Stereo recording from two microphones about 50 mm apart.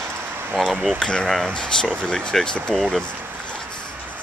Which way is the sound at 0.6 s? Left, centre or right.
Centre.